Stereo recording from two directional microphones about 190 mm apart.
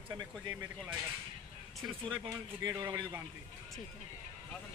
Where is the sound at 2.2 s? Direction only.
20° right (ahead or behind).